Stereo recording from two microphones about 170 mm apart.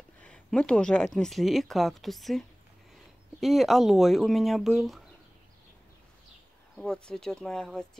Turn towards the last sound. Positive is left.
turn(degrees=5)  # may be behind; listen again after turning